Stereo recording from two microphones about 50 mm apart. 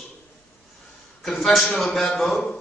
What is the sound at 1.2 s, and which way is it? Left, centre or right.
A man's voice, centre.